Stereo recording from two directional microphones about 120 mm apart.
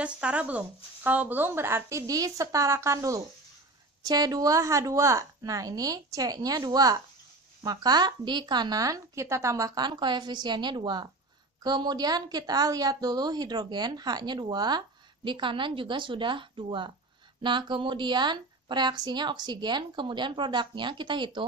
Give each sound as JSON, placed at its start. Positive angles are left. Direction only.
{"t": 0.0, "sound": "a woman's voice", "side_deg": -10}